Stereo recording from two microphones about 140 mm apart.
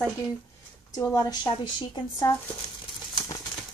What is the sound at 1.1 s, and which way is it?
Speech, 30° left (ahead or behind).